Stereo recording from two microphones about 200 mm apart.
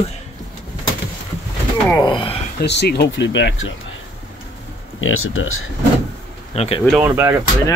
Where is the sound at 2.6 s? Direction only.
55° left (ahead or behind).